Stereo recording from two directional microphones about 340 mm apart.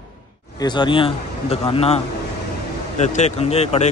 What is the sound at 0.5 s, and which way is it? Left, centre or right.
A man's voice, centre.